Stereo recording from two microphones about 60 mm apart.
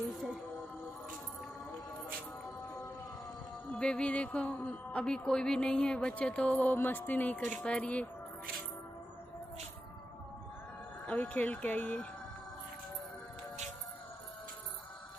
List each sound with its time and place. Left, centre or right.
3.7 s speech: centre
5.0 s speech: centre
11.1 s speech: left